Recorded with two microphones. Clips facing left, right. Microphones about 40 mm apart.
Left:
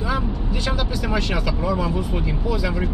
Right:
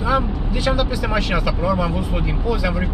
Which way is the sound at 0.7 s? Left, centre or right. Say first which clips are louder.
Right 5 dB; centre.